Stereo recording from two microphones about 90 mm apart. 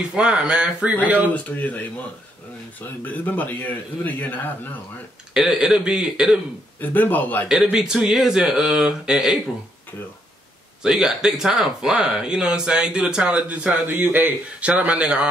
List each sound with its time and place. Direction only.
0.1 s speech: 10° right (ahead or behind)
1.3 s a man's voice: 15° left (ahead or behind)
5.3 s a man's voice: 5° right (ahead or behind)
6.8 s speech: 20° left (ahead or behind)
7.7 s speech: 5° right (ahead or behind)
10.8 s speech: 5° right (ahead or behind)